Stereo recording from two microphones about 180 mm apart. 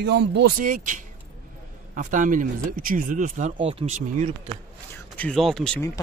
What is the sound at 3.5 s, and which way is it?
Speech, 30° right (ahead or behind).